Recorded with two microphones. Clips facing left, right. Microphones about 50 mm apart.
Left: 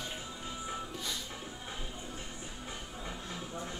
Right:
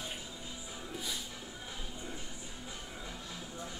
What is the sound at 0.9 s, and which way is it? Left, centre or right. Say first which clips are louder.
Music: left 1 dB; centre.